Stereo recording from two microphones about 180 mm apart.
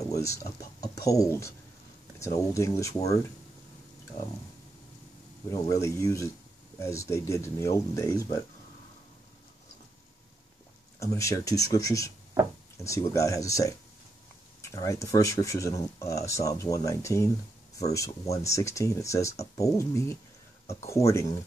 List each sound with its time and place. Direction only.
0.0 s speech: 15° left (ahead or behind)
5.5 s speech: 20° left (ahead or behind)
11.0 s speech: 15° left (ahead or behind)
18.3 s speech: 15° left (ahead or behind)